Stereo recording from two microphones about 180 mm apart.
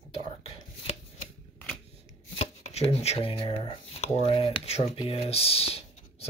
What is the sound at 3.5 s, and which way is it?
Speech, 30° left (ahead or behind).